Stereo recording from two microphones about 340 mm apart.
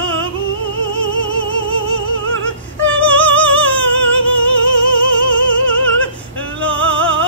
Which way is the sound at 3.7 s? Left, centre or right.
Left.